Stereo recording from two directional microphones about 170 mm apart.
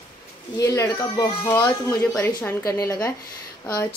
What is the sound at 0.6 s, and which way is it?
Speech, 20° left (ahead or behind).